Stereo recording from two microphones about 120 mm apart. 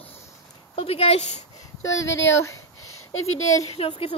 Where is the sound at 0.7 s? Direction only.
55° left (ahead or behind).